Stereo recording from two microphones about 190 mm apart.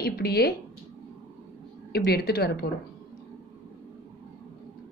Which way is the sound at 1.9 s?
55° left (ahead or behind).